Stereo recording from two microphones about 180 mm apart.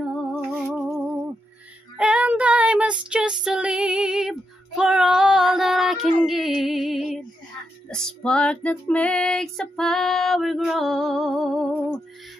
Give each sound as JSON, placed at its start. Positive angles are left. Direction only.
{"t": 0.0, "sound": "humming", "side_deg": 0}
{"t": 0.7, "sound": "a sound", "side_deg": -5}
{"t": 2.0, "sound": "child singing", "side_deg": -5}
{"t": 7.9, "sound": "female singing", "side_deg": 5}